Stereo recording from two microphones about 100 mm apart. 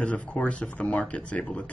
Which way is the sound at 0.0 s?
10° left (ahead or behind).